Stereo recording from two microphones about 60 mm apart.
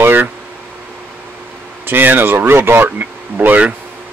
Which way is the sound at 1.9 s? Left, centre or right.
Right.